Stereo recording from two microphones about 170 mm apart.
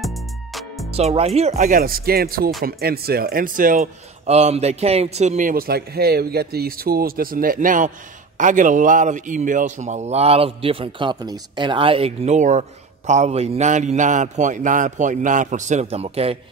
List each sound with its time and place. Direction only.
0.0 s music: centre (ahead or behind)
0.9 s a man's voice: 35° right (ahead or behind); by 3.9 s 55° right (ahead or behind)
4.3 s a man's voice: 40° right (ahead or behind)